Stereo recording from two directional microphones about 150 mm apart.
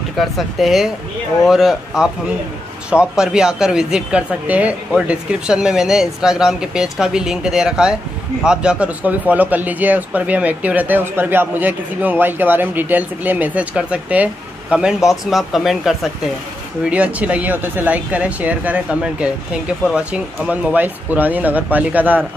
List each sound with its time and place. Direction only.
0.2 s speech: centre (ahead or behind)